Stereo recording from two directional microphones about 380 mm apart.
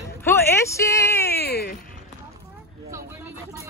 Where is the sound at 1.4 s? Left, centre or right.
Left.